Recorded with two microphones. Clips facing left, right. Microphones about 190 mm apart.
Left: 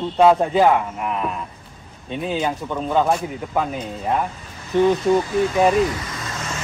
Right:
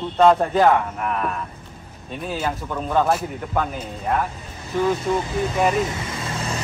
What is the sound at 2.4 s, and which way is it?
Speech, 5° left (ahead or behind).